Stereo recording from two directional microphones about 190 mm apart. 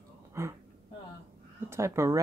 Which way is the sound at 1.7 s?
15° right (ahead or behind).